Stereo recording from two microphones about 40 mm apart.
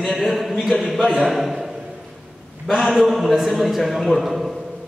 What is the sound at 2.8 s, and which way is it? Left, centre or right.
A man's voice, centre.